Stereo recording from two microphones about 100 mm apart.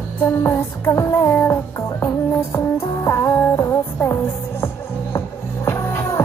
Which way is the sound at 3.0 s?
30° left (ahead or behind).